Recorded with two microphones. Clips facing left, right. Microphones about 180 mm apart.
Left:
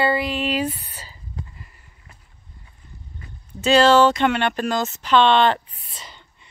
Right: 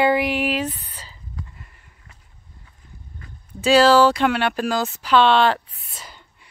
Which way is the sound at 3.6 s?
5° right (ahead or behind).